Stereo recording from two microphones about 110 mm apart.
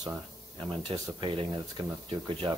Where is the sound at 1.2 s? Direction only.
50° right (ahead or behind).